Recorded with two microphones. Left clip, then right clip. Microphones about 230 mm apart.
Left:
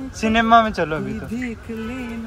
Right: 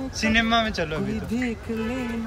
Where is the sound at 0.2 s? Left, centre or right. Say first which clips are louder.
Left 7 dB; centre.